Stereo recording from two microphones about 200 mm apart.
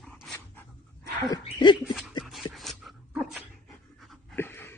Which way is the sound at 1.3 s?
25° left (ahead or behind).